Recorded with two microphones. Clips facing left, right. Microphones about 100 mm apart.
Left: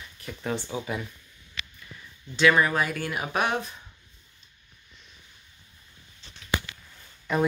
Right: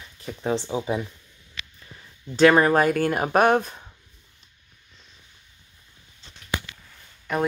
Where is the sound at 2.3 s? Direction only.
45° right (ahead or behind).